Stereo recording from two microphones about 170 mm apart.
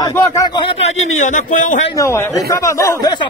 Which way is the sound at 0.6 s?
40° left (ahead or behind).